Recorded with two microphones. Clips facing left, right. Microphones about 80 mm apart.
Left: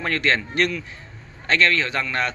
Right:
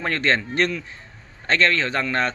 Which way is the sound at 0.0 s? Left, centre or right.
Right.